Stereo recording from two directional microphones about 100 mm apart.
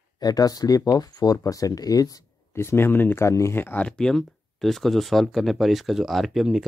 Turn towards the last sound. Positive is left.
turn(degrees=-5)  # may be behind; listen again after turning